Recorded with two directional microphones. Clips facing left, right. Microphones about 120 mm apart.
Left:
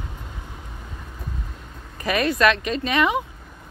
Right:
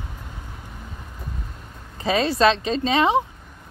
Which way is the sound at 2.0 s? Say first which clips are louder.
Right 1 dB; 25° right (ahead or behind).